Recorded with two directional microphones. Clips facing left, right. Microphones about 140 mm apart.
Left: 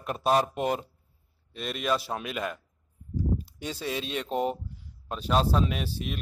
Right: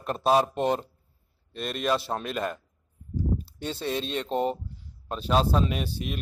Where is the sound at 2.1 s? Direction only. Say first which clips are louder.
Right 2 dB; 25° right (ahead or behind).